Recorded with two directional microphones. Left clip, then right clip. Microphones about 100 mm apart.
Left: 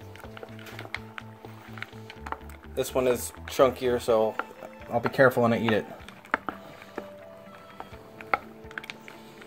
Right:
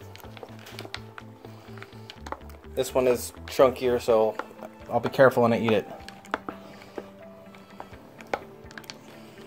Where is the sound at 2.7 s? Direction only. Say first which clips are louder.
Right 2 dB; 5° right (ahead or behind).